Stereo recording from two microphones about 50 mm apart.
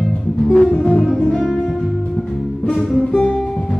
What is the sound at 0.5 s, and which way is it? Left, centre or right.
Music, centre.